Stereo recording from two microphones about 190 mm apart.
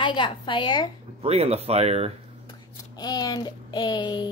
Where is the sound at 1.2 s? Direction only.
35° right (ahead or behind).